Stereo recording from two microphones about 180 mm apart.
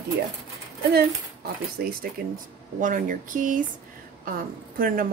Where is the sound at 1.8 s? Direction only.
60° right (ahead or behind).